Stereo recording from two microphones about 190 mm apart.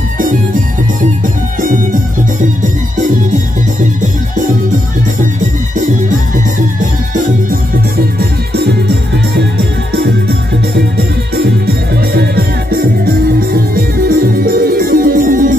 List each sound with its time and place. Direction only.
1.6 s music: 45° right (ahead or behind)
8.2 s music: 60° right (ahead or behind)
11.3 s music: 55° right (ahead or behind)